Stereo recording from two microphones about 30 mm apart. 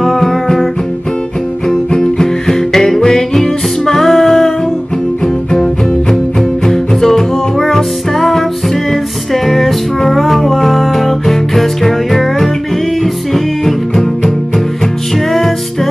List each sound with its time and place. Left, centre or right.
0.0 s music: centre
1.7 s music: left
15.3 s music: centre